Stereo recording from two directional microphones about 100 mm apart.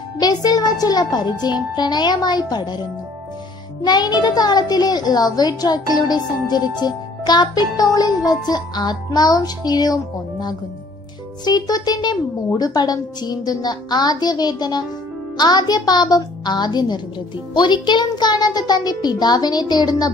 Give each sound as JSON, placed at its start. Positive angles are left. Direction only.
{"t": 0.2, "sound": "a woman's voice", "side_deg": 40}
{"t": 3.8, "sound": "a woman's voice", "side_deg": 45}
{"t": 11.4, "sound": "a woman's voice", "side_deg": 40}